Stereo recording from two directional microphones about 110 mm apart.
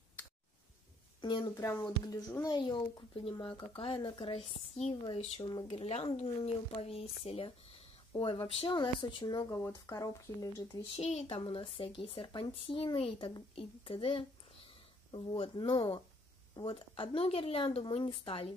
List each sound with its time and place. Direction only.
1.2 s a woman's voice: 45° left (ahead or behind)
1.6 s speech: 25° left (ahead or behind)
1.9 s speech: 35° left (ahead or behind)
4.3 s a woman's voice: 80° left
5.4 s speech: 35° left (ahead or behind)
5.7 s speech: 65° left (ahead or behind)
8.7 s speech: 40° left (ahead or behind)
10.8 s speech: 65° left (ahead or behind)